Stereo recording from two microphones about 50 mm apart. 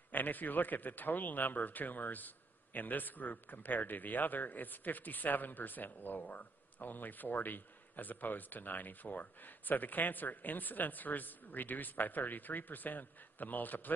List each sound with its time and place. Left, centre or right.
0.1 s a man's voice: left